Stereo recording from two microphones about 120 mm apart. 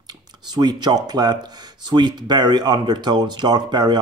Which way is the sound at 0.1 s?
35° right (ahead or behind).